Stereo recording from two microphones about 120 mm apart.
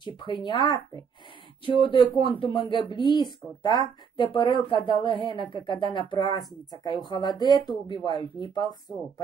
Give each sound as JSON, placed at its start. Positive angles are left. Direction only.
{"t": 0.0, "sound": "speech", "side_deg": 40}